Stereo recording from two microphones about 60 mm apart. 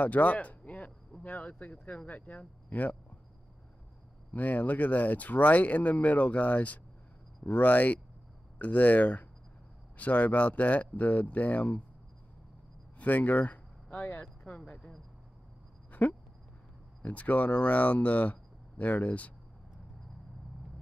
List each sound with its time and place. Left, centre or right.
0.0 s a sound: left
1.2 s speech: left
4.3 s speech: left
13.0 s speech: left
14.2 s speech: centre
15.9 s a sound: left
17.0 s speech: left